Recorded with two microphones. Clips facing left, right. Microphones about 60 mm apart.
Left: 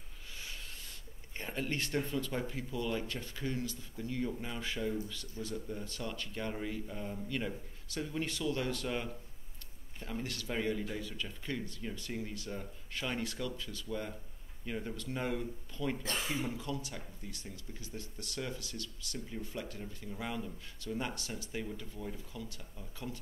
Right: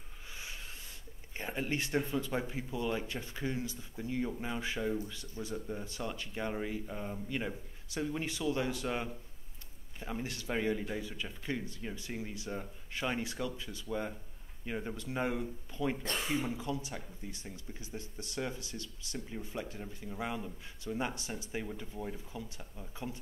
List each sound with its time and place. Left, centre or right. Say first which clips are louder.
1.3 s speech: right 2 dB; centre
19.6 s speech: right 1 dB; centre